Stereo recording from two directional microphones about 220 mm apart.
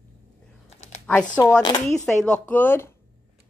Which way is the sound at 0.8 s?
30° left (ahead or behind).